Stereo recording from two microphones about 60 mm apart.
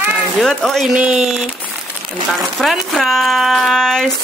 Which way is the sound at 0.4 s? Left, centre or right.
Centre.